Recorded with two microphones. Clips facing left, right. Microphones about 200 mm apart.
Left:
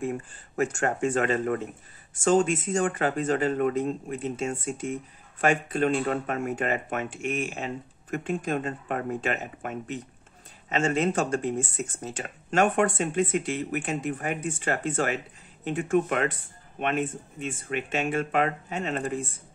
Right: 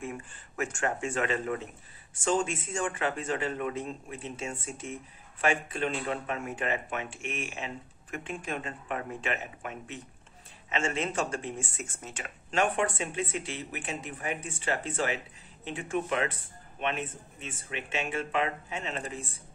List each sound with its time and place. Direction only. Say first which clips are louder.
0.0 s speech: left 7 dB; 35° left (ahead or behind)